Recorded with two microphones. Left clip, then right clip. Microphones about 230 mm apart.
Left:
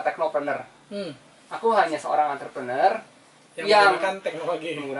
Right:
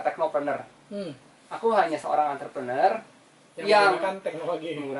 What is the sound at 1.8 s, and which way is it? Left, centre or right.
Speech, centre.